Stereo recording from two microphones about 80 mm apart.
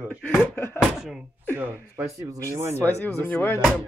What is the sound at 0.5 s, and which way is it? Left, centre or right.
Speech, left.